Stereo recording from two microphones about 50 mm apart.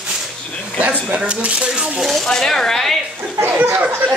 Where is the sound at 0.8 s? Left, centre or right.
Right.